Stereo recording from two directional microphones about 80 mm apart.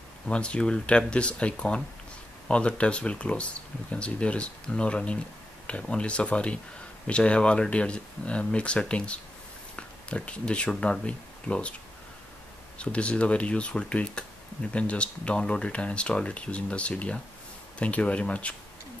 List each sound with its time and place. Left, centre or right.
0.3 s speech: centre
12.7 s speech: centre